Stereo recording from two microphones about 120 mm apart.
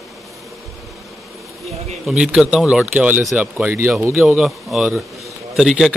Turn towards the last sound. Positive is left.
turn(degrees=-5)  # may be behind; listen again after turning